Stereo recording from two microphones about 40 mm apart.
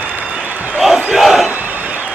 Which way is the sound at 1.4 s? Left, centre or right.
Right.